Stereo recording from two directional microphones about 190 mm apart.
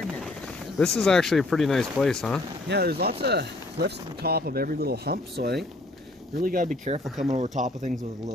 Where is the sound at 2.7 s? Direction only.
55° right (ahead or behind); by 7.9 s 40° right (ahead or behind).